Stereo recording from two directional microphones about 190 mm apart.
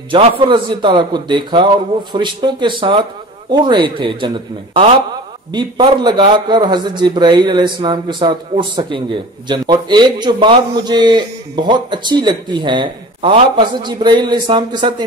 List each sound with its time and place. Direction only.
0.1 s a man's voice: 25° right (ahead or behind)
5.5 s a man's voice: 25° right (ahead or behind)